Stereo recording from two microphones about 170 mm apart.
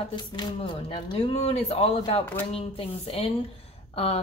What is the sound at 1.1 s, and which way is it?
Speech, 35° left (ahead or behind).